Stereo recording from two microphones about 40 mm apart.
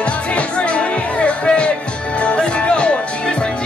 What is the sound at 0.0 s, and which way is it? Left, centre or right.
Music, left.